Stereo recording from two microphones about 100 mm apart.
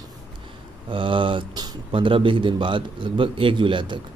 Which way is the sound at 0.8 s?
60° right (ahead or behind).